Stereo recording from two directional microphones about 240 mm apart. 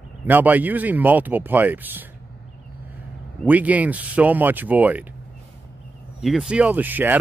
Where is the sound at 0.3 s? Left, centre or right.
Centre.